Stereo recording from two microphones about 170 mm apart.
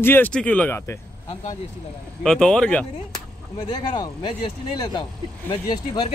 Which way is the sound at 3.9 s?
30° left (ahead or behind).